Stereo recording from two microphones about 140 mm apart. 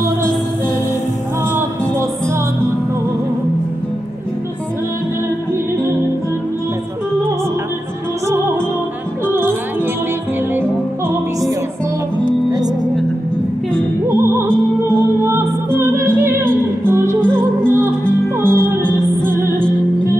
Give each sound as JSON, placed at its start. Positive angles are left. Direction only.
{"t": 1.5, "sound": "music", "side_deg": -15}
{"t": 12.4, "sound": "music", "side_deg": -25}
{"t": 14.1, "sound": "music", "side_deg": -20}